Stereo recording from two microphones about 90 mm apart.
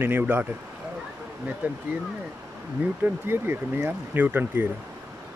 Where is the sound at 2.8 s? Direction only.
20° right (ahead or behind).